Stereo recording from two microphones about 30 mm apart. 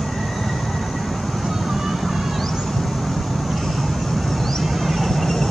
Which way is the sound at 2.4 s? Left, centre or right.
Centre.